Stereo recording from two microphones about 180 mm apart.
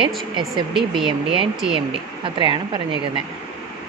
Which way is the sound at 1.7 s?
30° right (ahead or behind).